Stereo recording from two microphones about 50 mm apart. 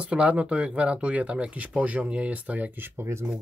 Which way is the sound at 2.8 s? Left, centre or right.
Right.